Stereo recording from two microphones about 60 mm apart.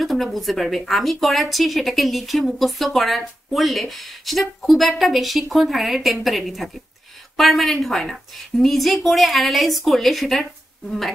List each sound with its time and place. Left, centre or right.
0.0 s a woman's voice: centre